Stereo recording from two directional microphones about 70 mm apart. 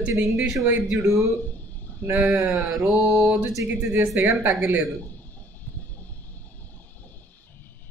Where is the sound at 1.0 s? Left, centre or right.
Right.